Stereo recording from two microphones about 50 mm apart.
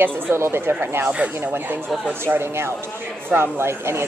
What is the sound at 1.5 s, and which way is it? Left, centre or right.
Speech, right.